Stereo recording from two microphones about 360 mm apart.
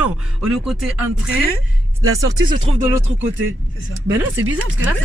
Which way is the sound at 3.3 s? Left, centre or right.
Right.